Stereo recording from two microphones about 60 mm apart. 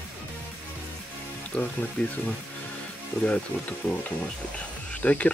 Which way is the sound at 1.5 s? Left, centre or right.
Left.